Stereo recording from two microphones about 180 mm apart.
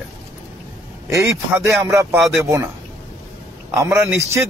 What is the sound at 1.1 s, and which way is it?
Speech, 15° right (ahead or behind).